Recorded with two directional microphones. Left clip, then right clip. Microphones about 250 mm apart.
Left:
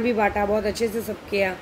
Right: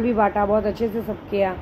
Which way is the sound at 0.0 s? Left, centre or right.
Centre.